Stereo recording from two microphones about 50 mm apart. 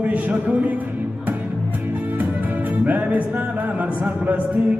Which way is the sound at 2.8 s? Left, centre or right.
Right.